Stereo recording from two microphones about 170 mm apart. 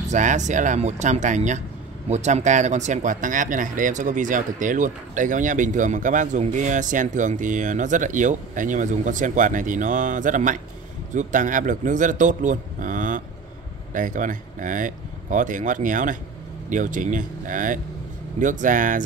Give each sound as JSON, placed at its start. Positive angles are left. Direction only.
{"t": 0.1, "sound": "speech", "side_deg": -45}